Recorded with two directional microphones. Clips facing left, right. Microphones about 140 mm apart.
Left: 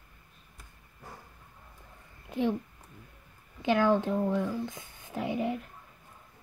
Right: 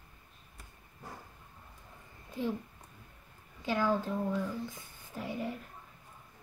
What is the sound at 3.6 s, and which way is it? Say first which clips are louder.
Speech: left 6 dB; 75° left (ahead or behind).